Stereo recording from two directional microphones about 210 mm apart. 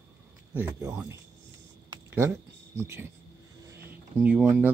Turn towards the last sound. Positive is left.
turn(degrees=-5)  # may be behind; listen again after turning